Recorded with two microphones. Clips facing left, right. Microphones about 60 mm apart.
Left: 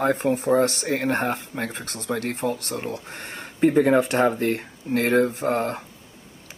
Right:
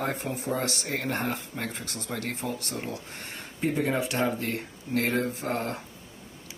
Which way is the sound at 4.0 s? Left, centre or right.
Left.